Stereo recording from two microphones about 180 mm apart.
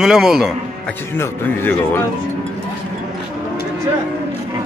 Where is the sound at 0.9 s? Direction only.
10° left (ahead or behind).